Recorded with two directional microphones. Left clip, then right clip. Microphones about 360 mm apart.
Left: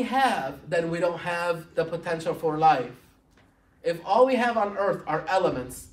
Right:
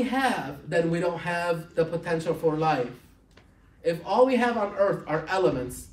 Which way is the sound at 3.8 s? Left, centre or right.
Centre.